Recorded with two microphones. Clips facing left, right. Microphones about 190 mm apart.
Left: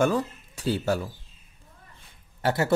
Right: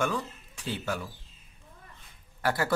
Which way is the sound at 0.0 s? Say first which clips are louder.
Left 7 dB; 40° left (ahead or behind).